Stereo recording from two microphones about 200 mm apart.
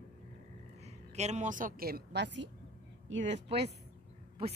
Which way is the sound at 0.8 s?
35° right (ahead or behind).